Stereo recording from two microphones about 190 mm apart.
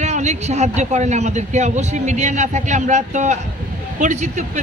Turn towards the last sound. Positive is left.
turn(degrees=-40)  # may be behind; listen again after turning